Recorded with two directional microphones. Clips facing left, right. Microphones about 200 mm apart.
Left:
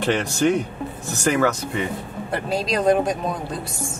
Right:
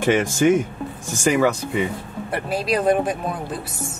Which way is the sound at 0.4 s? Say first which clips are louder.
Right 1 dB; 10° right (ahead or behind).